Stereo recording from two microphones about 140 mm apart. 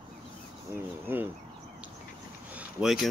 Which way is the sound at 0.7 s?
15° right (ahead or behind).